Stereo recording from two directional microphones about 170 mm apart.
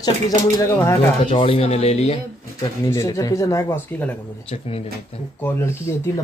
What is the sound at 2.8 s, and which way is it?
Speech, 20° left (ahead or behind).